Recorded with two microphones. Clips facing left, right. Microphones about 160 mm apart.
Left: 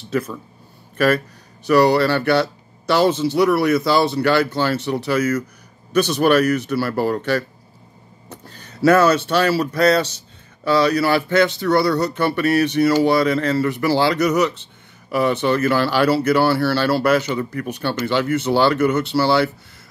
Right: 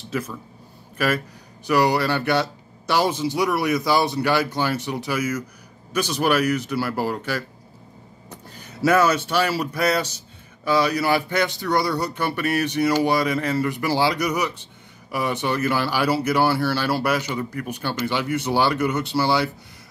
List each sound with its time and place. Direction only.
1.7 s speech: 15° right (ahead or behind)
8.5 s speech: 10° right (ahead or behind)